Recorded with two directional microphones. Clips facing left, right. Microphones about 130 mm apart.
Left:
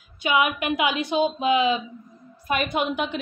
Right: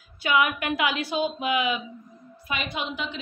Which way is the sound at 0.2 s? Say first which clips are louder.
Left 1 dB; 20° left (ahead or behind).